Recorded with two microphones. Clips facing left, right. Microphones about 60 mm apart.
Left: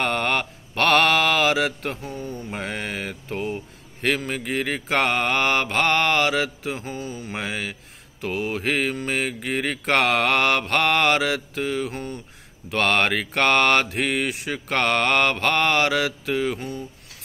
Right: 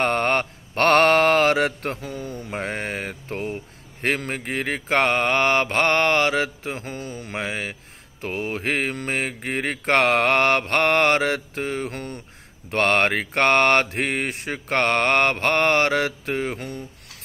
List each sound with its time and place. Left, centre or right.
0.0 s mantra: right
2.0 s speech: right
2.5 s mantra: right
6.8 s mantra: right
7.3 s speech: right
8.2 s mantra: right
11.9 s mantra: right
12.7 s mantra: right
16.5 s speech: right